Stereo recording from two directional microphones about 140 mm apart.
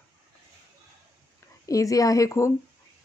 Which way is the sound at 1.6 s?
25° left (ahead or behind).